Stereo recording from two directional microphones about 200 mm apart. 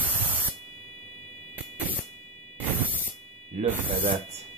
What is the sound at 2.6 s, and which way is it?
Spray, 10° right (ahead or behind).